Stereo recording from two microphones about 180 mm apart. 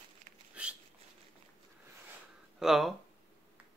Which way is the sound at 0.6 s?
5° right (ahead or behind).